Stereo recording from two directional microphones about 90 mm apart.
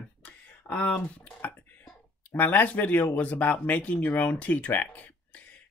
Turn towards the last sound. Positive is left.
turn(degrees=20)  # may be behind; listen again after turning